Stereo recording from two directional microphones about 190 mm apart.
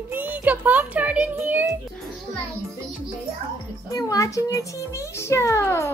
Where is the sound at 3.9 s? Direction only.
20° left (ahead or behind).